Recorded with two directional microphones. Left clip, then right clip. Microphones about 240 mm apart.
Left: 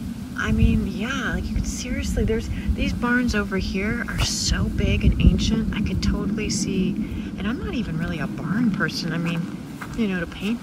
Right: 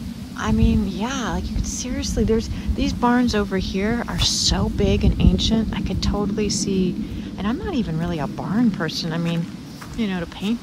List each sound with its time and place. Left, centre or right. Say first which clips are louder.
0.4 s speech: right 2 dB; centre
1.9 s speech: right 4 dB; right
2.8 s speech: right 3 dB; centre